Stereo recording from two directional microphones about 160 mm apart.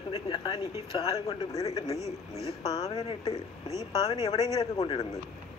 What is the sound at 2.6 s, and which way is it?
Speech, 25° left (ahead or behind).